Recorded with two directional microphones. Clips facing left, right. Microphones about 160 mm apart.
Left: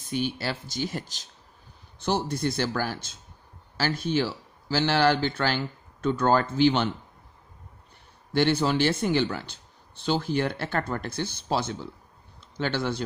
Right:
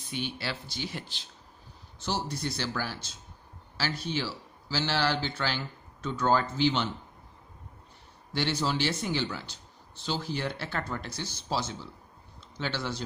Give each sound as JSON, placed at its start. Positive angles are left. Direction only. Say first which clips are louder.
{"t": 0.1, "sound": "speech", "louder": "left 6 dB", "side_deg": 45}
{"t": 2.0, "sound": "speech", "louder": "left 6 dB", "side_deg": 55}
{"t": 8.3, "sound": "a man's voice", "louder": "left 7 dB", "side_deg": 55}